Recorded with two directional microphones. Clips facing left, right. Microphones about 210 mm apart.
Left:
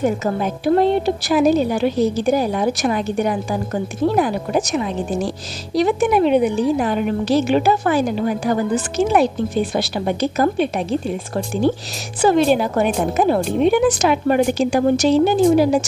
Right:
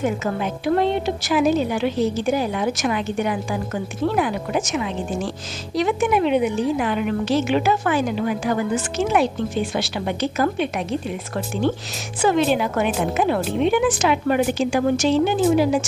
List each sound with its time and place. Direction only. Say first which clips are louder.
0.0 s a woman's voice: left 3 dB; 40° left (ahead or behind)